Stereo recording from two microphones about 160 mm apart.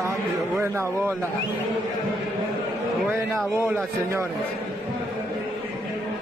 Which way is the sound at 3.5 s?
15° right (ahead or behind).